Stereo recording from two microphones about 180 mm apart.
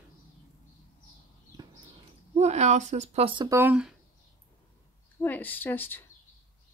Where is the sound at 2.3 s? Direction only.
40° right (ahead or behind).